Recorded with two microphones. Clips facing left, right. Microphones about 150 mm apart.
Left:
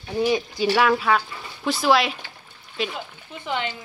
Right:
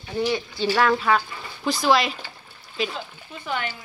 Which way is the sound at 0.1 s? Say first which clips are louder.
Left 3 dB; 15° left (ahead or behind).